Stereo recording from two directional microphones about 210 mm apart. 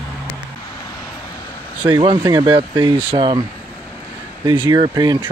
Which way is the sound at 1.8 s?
20° right (ahead or behind).